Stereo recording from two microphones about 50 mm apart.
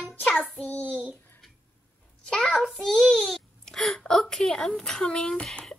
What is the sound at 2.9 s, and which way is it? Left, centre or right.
A child's voice, centre.